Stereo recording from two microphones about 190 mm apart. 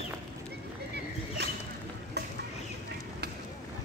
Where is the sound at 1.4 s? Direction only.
60° right (ahead or behind).